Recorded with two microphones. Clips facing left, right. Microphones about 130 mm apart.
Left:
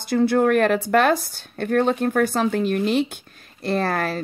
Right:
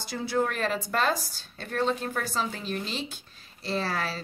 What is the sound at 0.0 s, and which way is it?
Speech, 55° left (ahead or behind).